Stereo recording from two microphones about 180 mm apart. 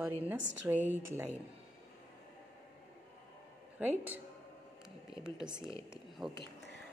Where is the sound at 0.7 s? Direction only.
10° right (ahead or behind).